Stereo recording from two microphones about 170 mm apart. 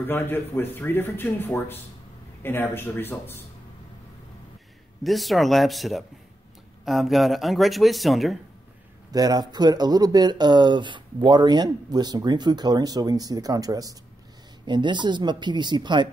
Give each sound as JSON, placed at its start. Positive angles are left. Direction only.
{"t": 0.0, "sound": "speech", "side_deg": 10}
{"t": 5.0, "sound": "speech", "side_deg": 0}
{"t": 9.1, "sound": "speech", "side_deg": -25}